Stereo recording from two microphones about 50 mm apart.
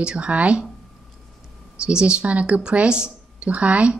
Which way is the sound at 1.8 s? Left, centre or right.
Centre.